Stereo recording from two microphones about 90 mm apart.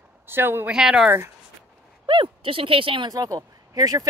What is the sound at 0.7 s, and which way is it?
Speech, 5° right (ahead or behind).